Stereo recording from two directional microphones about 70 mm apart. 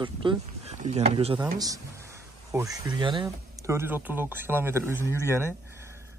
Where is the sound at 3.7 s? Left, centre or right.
Right.